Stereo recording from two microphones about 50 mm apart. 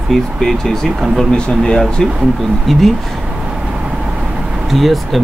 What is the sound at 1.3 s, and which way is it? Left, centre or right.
Speech, centre.